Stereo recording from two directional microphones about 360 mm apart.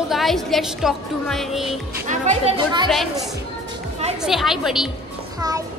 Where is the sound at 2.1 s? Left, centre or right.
Centre.